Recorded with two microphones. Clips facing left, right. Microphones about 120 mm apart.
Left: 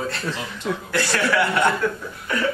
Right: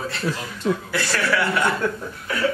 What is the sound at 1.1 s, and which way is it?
Speech, 20° left (ahead or behind).